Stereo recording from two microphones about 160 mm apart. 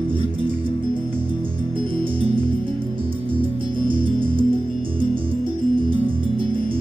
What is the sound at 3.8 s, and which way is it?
Music, 30° right (ahead or behind).